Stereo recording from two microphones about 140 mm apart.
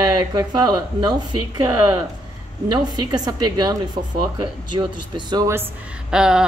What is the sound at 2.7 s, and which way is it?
Speech, 30° right (ahead or behind).